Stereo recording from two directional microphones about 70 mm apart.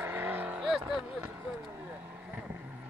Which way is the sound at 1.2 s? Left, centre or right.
Right.